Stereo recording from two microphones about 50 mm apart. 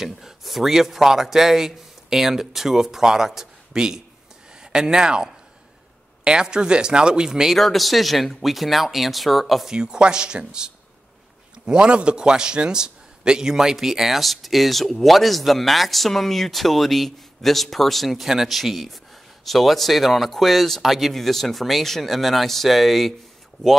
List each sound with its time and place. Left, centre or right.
0.0 s a man's voice: centre
7.5 s a man's voice: centre
9.7 s a man's voice: centre